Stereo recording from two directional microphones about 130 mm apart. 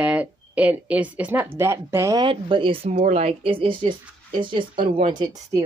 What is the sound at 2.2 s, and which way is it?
Speech, 40° right (ahead or behind).